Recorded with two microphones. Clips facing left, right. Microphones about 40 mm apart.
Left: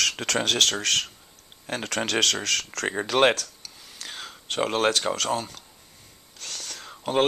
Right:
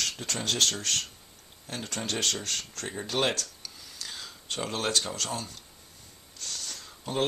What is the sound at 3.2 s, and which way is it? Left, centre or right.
Speech, left.